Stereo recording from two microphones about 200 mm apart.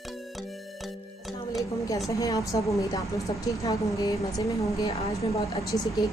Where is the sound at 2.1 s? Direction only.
15° left (ahead or behind).